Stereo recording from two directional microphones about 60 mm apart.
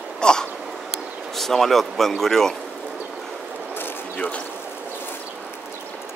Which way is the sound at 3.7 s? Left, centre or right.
Left.